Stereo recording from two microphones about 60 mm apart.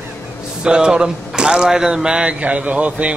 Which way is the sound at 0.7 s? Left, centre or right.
Centre.